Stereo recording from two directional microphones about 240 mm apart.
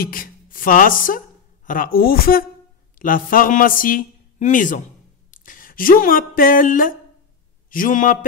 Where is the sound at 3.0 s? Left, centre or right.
Left.